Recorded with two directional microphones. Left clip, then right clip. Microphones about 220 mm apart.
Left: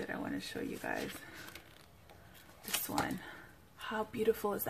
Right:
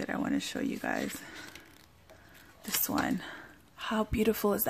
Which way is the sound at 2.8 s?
45° right (ahead or behind).